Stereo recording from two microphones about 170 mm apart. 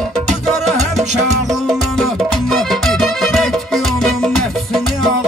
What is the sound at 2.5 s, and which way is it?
Music, centre (ahead or behind).